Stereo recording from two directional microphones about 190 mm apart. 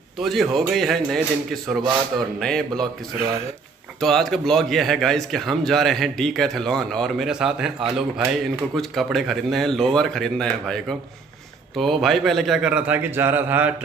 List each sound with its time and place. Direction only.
0.2 s a man's voice: centre (ahead or behind)
4.0 s a man's voice: centre (ahead or behind)